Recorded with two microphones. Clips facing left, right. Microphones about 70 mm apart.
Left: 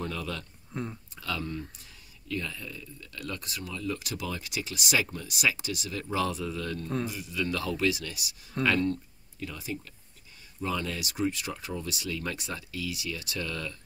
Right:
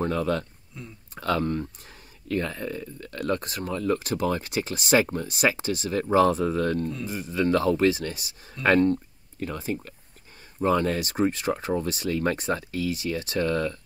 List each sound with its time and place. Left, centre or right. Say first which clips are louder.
0.0 s speech: right 10 dB; right
0.7 s speech: left 7 dB; left
1.1 s speech: right 11 dB; right